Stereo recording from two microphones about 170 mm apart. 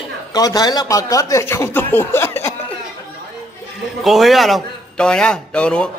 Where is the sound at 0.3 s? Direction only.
20° left (ahead or behind).